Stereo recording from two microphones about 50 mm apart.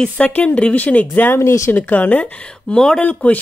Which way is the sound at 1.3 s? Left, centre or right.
Left.